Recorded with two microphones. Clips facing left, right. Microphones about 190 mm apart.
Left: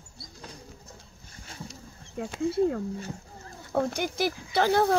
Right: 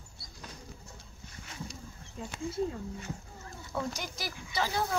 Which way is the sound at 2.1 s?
65° left (ahead or behind).